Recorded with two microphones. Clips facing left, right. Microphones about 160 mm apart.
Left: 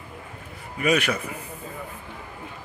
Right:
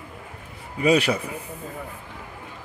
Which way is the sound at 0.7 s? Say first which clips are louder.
Right 3 dB; 30° right (ahead or behind).